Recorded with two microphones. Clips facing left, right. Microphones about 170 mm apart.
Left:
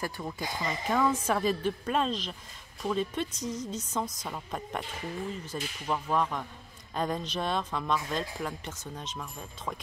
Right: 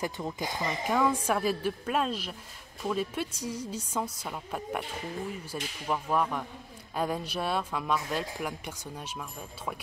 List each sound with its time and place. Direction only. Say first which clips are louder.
0.0 s speech: right 2 dB; 15° right (ahead or behind)